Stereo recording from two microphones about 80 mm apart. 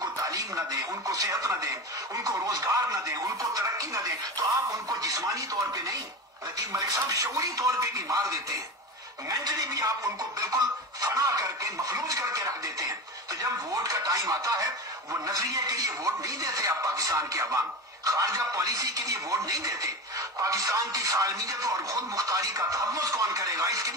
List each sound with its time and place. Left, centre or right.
0.0 s speech: right